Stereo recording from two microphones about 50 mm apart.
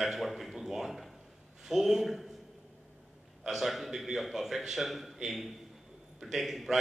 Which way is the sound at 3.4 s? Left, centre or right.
Centre.